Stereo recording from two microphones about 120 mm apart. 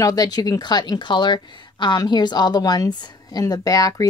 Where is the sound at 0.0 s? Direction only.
30° left (ahead or behind).